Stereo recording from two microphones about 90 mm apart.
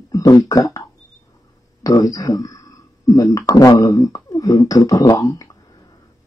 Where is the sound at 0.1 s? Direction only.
40° left (ahead or behind).